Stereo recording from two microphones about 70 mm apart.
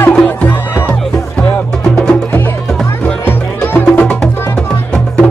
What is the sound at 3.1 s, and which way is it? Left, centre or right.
Music, left.